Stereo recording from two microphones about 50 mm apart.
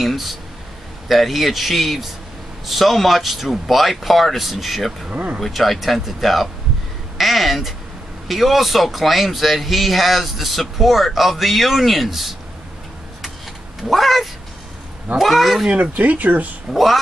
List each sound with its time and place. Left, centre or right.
0.0 s speech: centre
5.1 s speech: right
5.4 s speech: centre
13.8 s speech: centre
15.7 s speech: right
16.7 s speech: centre